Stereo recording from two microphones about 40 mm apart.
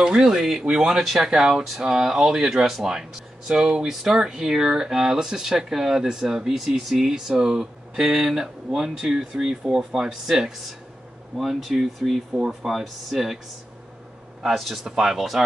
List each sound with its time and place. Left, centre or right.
0.0 s speech: centre
14.5 s speech: centre
14.9 s speech: centre
15.1 s speech: centre